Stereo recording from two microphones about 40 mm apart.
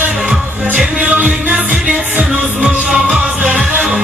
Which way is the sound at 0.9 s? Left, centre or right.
Right.